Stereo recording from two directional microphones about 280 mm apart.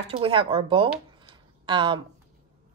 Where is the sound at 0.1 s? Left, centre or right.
Centre.